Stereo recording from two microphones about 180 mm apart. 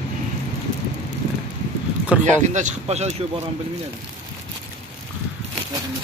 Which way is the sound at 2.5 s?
40° right (ahead or behind).